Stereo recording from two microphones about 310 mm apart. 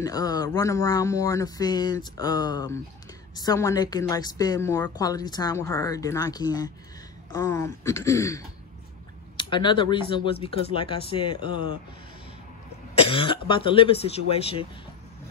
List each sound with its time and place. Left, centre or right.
0.0 s a woman's voice: centre
13.1 s a woman's voice: centre